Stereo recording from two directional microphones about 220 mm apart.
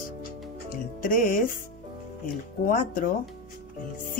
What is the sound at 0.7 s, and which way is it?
Speech, 40° left (ahead or behind).